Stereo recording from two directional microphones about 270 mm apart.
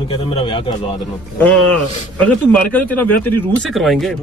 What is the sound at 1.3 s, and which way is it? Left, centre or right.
A man's voice, centre.